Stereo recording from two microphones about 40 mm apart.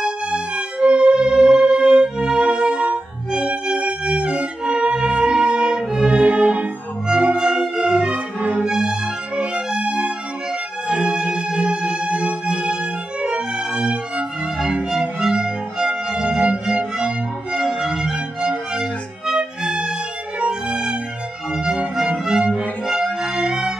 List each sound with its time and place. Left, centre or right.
0.0 s music: right
14.9 s violin: centre
16.6 s music: right
23.0 s music: centre